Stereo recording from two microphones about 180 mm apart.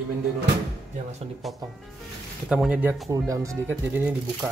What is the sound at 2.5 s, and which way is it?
Speech, 5° right (ahead or behind).